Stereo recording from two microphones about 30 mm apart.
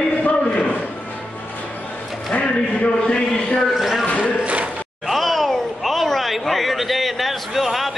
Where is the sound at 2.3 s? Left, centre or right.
Left.